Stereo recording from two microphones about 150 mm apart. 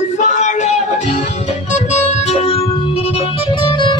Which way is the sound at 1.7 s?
50° left (ahead or behind).